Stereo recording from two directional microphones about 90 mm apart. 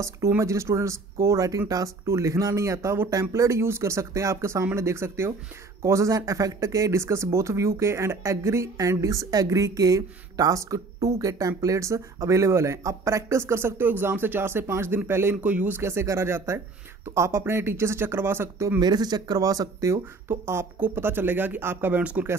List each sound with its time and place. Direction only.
0.4 s speech: 35° right (ahead or behind)
15.4 s speech: 15° right (ahead or behind)
15.8 s speech: 30° right (ahead or behind)
18.8 s speech: 50° right (ahead or behind)
20.2 s speech: 25° right (ahead or behind)